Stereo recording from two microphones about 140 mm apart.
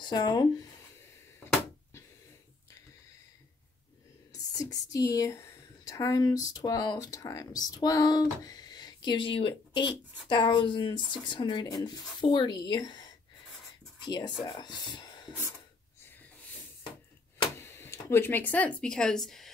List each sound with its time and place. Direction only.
0.0 s speech: 30° left (ahead or behind)
4.3 s speech: 25° left (ahead or behind)
17.6 s speech: 15° left (ahead or behind)